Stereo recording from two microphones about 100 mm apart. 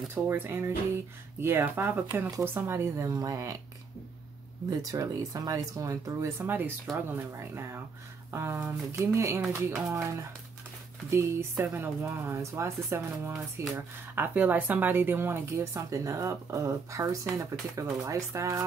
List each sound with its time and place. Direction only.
0.1 s speech: 25° right (ahead or behind)
4.6 s speech: 35° right (ahead or behind)